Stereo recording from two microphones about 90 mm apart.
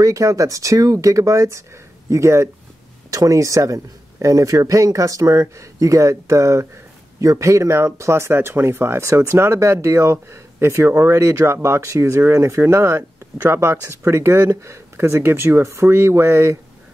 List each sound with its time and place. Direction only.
0.0 s speech: 35° right (ahead or behind)